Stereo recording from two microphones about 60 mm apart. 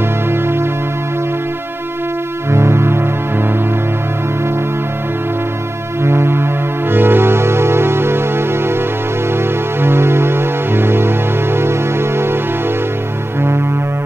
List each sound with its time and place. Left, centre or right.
0.3 s music: right
2.5 s music: right
6.0 s music: right